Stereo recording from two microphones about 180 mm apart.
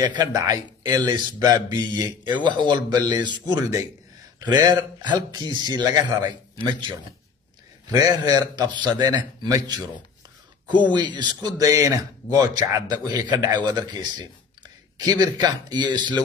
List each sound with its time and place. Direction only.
0.0 s speech: 20° right (ahead or behind)
10.9 s speech: 25° right (ahead or behind)